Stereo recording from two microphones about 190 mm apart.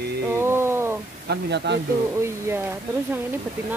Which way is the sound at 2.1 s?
15° right (ahead or behind).